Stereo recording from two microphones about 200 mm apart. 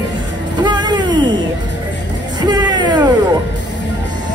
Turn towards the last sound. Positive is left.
turn(degrees=-20)  # may be behind; listen again after turning